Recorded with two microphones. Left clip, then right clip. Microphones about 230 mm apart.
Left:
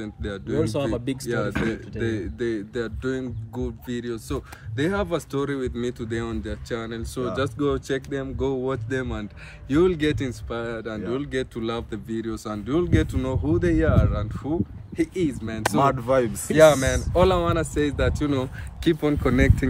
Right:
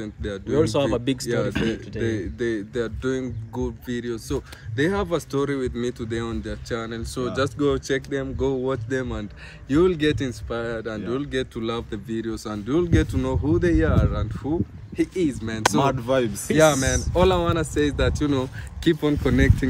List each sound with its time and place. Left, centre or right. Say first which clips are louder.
0.0 s speech: right 2 dB; centre
0.9 s speech: right 4 dB; centre
1.2 s speech: right 2 dB; centre
15.8 s speech: left 5 dB; centre